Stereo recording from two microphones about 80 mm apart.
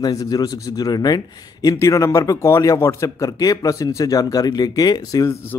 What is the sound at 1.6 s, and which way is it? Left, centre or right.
Speech, left.